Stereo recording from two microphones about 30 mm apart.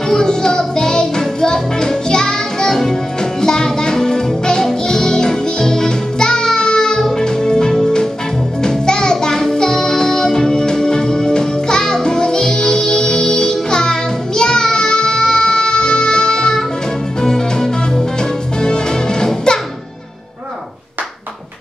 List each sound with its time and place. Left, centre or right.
0.1 s music: left